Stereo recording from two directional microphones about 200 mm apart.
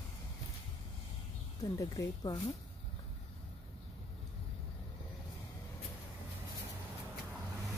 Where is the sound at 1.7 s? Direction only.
15° left (ahead or behind).